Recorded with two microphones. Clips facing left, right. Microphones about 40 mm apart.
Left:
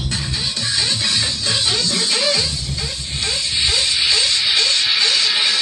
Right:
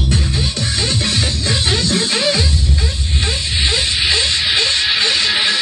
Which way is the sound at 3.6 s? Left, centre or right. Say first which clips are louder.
Right 2 dB; right.